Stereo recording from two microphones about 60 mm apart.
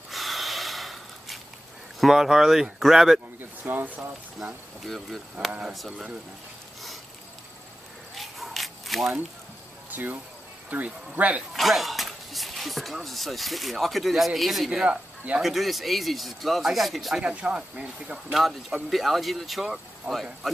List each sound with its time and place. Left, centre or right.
0.1 s snort: centre
2.0 s speech: centre
3.3 s speech: right
4.8 s speech: centre
8.2 s a sound: centre
9.8 s a sound: right
10.7 s speech: right
11.5 s speech: centre
14.7 s speech: centre
15.4 s speech: centre
17.2 s speech: centre
18.3 s speech: centre